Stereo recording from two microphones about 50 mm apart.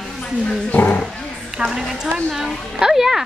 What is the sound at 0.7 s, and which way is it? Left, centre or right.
Speech, left.